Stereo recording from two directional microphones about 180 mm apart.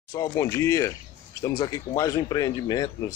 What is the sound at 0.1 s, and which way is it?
Speech, 15° left (ahead or behind).